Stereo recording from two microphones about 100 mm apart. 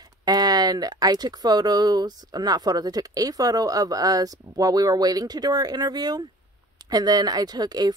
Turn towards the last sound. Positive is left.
turn(degrees=-45)  # may be behind; listen again after turning